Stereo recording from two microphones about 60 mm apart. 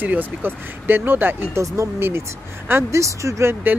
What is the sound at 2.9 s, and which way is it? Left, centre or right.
Speech, right.